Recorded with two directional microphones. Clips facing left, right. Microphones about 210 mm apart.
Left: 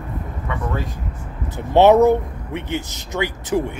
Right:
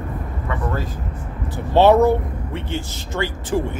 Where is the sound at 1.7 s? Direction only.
20° left (ahead or behind).